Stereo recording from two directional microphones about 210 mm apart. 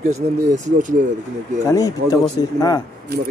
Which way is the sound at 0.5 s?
35° right (ahead or behind).